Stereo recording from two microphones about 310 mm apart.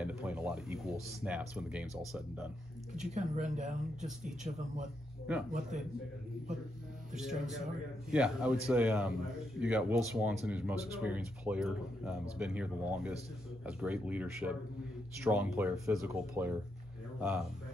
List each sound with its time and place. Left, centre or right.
0.0 s speech: centre
3.2 s speech: right
4.0 s speech: centre
5.5 s speech: right
7.2 s a man's voice: centre